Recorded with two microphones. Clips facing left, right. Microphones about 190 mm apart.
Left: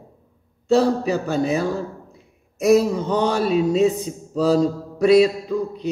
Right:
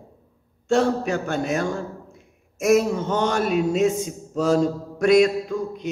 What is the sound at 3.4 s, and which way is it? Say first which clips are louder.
Speech: left 3 dB; 30° left (ahead or behind).